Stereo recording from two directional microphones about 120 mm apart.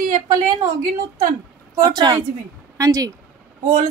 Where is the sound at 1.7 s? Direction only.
30° right (ahead or behind).